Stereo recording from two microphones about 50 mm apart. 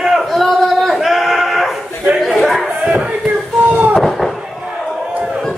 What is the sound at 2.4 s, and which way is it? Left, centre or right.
Chatter, centre.